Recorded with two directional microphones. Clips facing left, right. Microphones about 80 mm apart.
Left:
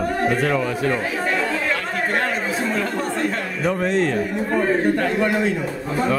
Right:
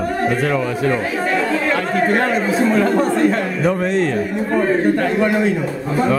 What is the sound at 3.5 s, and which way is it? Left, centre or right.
Speech, right.